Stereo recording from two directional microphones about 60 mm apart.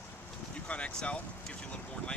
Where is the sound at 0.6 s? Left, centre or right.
Centre.